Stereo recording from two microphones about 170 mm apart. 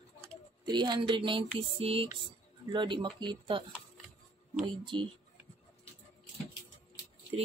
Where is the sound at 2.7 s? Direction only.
30° right (ahead or behind).